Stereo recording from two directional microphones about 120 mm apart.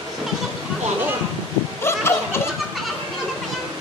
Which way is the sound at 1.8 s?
20° left (ahead or behind).